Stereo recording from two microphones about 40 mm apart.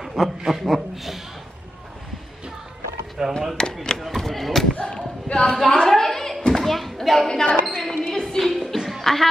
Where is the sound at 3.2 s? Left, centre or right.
Centre.